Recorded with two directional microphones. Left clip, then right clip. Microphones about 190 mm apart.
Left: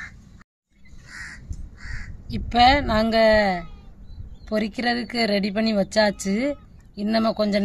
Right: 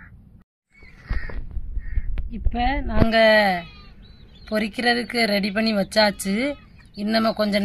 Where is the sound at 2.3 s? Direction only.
10° left (ahead or behind).